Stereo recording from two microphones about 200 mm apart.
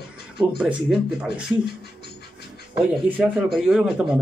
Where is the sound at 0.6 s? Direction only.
5° right (ahead or behind).